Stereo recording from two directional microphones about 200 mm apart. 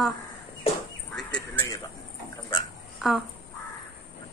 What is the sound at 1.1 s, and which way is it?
Bird, 5° left (ahead or behind).